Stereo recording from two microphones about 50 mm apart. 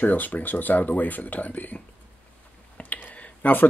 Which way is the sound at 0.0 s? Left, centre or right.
Left.